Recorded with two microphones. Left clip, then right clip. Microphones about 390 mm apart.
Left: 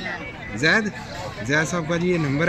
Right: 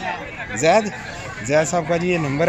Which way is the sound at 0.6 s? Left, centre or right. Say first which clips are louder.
Right 4 dB; centre.